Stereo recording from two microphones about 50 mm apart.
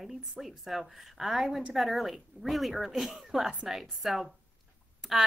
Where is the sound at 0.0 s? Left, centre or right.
Centre.